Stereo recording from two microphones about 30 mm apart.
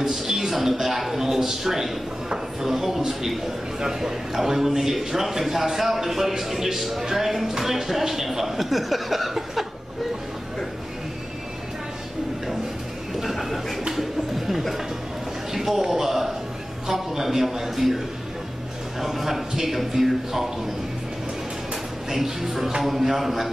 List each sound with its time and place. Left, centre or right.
0.0 s a man's voice: centre
13.2 s a sound: centre
15.5 s a man's voice: centre
22.1 s a man's voice: centre